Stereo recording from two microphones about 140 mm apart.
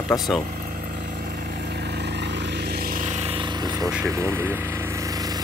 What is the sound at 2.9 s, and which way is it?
Vehicle, 65° right (ahead or behind).